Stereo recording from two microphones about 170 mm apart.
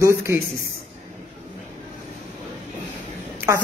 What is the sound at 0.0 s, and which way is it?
Speech, 15° right (ahead or behind).